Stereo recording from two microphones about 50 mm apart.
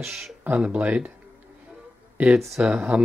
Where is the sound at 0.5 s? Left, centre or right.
Right.